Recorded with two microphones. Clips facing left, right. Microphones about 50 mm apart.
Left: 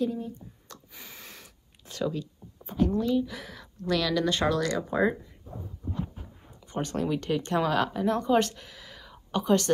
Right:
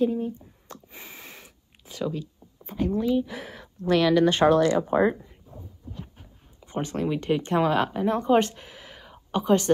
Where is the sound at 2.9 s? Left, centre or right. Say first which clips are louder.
Right 2 dB; centre.